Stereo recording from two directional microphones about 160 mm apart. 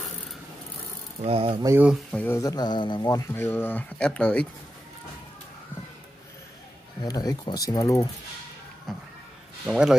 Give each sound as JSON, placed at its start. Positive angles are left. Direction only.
{"t": 1.2, "sound": "speech", "side_deg": -40}
{"t": 1.8, "sound": "speech", "side_deg": -5}
{"t": 2.1, "sound": "speech", "side_deg": 15}
{"t": 7.0, "sound": "speech", "side_deg": 25}
{"t": 8.9, "sound": "music", "side_deg": 0}
{"t": 9.7, "sound": "speech", "side_deg": -5}